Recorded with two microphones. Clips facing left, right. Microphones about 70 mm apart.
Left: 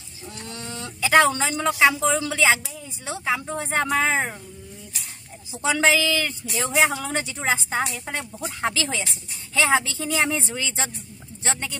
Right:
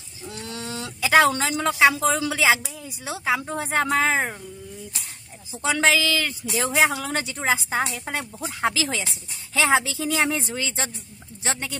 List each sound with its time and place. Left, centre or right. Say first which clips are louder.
0.2 s speech: right 2 dB; centre
5.5 s speech: left 1 dB; centre